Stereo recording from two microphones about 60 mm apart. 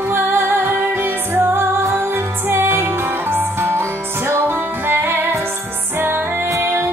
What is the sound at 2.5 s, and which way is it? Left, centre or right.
Music, right.